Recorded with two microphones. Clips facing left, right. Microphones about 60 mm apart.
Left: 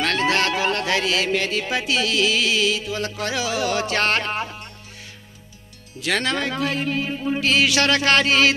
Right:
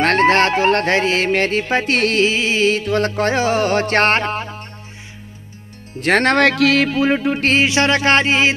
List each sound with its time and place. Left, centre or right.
0.0 s music: right
5.9 s speech: right
6.3 s speech: right
7.5 s a sound: right